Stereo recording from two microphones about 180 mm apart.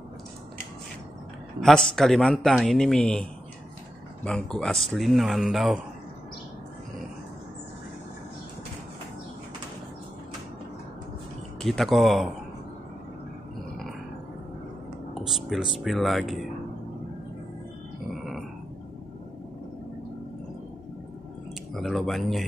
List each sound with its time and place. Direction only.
1.6 s a man's voice: 5° left (ahead or behind)
11.6 s a man's voice: centre (ahead or behind)
15.1 s a man's voice: centre (ahead or behind)
18.1 s grunt: centre (ahead or behind)
21.7 s a man's voice: centre (ahead or behind)